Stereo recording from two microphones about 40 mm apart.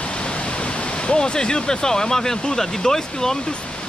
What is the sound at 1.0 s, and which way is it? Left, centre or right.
Speech, left.